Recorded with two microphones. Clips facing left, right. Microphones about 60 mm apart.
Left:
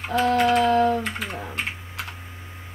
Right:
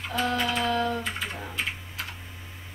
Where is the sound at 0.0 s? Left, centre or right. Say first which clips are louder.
Left 7 dB; left.